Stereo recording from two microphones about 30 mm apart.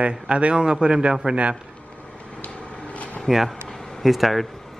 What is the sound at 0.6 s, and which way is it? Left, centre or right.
Speech, right.